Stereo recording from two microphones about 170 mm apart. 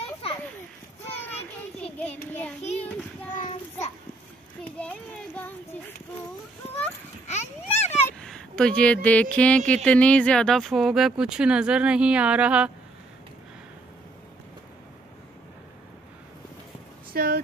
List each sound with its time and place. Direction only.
0.0 s children playing: 35° left (ahead or behind)
2.6 s child singing: 40° left (ahead or behind)
4.7 s a sound: 5° left (ahead or behind)
7.2 s children playing: 40° left (ahead or behind)
8.2 s speech: 5° left (ahead or behind)
17.1 s a sound: 60° right (ahead or behind)